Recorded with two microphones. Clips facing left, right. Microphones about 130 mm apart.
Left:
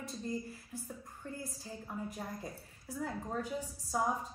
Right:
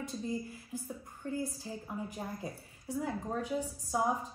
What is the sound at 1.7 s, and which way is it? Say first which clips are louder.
Speech: right 2 dB; 5° right (ahead or behind).